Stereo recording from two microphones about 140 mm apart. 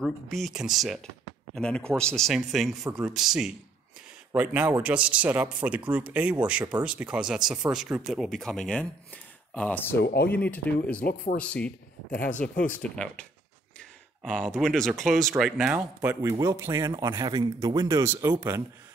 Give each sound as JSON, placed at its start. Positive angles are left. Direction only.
{"t": 0.0, "sound": "speech", "side_deg": 0}
{"t": 16.0, "sound": "a man's voice", "side_deg": -15}